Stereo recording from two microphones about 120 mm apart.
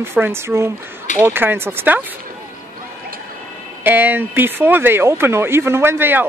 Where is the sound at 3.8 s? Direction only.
15° right (ahead or behind).